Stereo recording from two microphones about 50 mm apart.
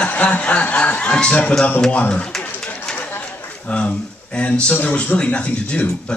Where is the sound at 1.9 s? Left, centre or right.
Left.